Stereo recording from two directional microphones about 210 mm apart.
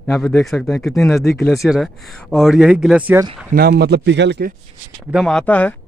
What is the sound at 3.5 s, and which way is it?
A man's voice, 50° right (ahead or behind).